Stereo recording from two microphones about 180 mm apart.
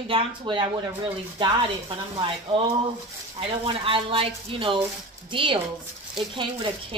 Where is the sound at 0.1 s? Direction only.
30° right (ahead or behind).